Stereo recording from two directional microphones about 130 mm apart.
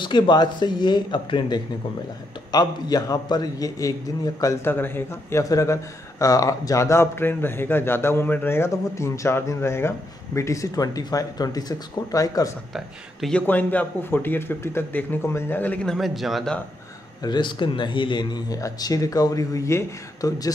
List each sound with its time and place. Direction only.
0.0 s a man's voice: 35° left (ahead or behind)
12.7 s speech: centre (ahead or behind)
13.5 s a man's voice: 10° left (ahead or behind)
17.2 s a man's voice: 35° left (ahead or behind)